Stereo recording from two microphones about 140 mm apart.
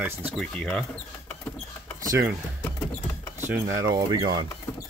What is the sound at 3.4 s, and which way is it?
Speech, 20° right (ahead or behind).